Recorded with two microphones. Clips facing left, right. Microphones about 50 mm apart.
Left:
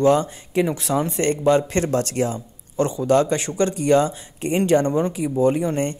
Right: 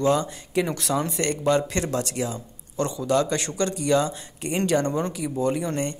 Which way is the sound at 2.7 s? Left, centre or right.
Left.